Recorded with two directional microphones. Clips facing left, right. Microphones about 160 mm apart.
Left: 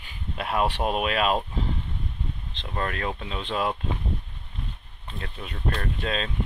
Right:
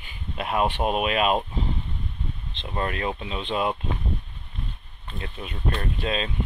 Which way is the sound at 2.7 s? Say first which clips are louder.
Right 2 dB; 10° right (ahead or behind).